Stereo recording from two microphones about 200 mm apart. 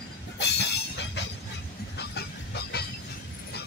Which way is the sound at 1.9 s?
55° left (ahead or behind).